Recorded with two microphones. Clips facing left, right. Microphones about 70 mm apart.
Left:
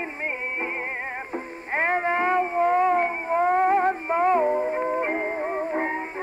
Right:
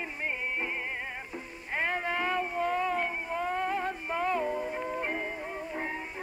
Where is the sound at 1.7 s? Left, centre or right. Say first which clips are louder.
Left 8 dB; left.